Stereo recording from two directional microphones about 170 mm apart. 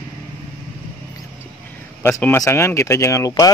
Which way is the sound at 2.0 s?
10° left (ahead or behind).